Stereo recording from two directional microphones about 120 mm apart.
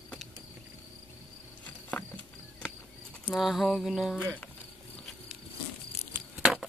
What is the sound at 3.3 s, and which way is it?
Speech, centre (ahead or behind).